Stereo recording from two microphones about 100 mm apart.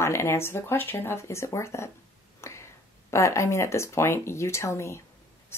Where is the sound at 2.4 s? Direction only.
30° left (ahead or behind).